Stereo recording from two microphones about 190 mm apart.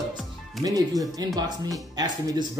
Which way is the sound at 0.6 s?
20° right (ahead or behind).